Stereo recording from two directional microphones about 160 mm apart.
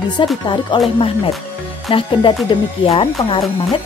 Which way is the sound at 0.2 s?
35° left (ahead or behind).